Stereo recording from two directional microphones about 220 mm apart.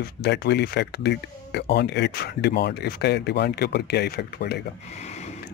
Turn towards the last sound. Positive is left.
turn(degrees=30)  # may be behind; listen again after turning